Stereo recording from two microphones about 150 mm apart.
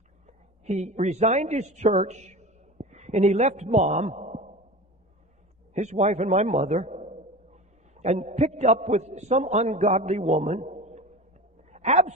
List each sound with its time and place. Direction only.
0.3 s a man's voice: 50° right (ahead or behind)
5.7 s a man's voice: 50° right (ahead or behind)
11.7 s a sound: 50° right (ahead or behind)